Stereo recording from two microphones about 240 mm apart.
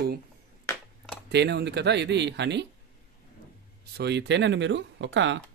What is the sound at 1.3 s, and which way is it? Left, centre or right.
Speech, right.